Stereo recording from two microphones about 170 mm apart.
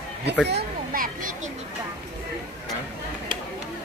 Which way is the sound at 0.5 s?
65° right (ahead or behind).